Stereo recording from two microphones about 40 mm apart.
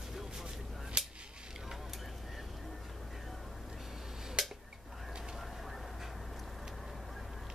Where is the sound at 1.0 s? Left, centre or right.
Right.